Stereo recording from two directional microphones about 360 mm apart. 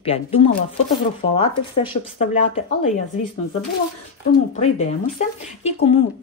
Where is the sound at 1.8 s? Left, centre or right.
Centre.